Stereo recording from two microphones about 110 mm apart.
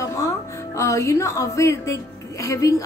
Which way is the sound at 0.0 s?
30° left (ahead or behind).